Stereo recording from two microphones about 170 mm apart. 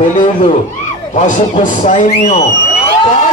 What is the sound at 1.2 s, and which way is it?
A man's voice, 45° left (ahead or behind).